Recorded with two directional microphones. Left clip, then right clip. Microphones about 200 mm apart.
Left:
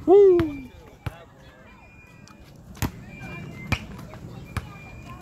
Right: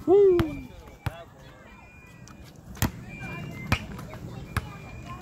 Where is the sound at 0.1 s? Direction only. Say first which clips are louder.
Left 4 dB; 50° left (ahead or behind).